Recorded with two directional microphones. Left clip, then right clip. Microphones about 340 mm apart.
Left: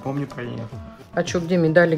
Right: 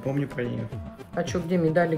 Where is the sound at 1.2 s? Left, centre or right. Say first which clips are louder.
Left 5 dB; left.